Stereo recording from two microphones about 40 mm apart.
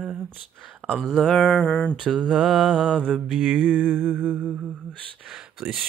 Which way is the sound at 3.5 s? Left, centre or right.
Right.